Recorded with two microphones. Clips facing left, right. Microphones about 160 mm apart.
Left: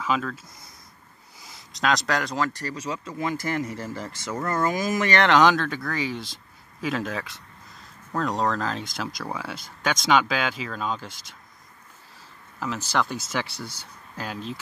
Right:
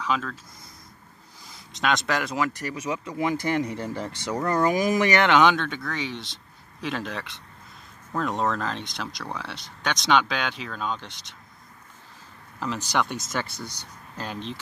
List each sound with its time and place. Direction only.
0.0 s speech: 5° left (ahead or behind)
1.4 s speech: centre (ahead or behind)
5.2 s speech: centre (ahead or behind)
12.5 s speech: 10° left (ahead or behind)